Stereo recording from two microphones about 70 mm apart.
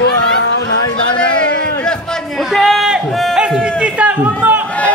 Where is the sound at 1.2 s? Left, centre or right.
Centre.